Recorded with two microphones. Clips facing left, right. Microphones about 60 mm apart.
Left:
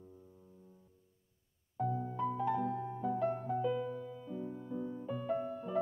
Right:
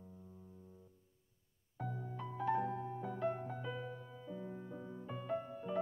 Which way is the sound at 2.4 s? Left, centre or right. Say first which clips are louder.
Even; right.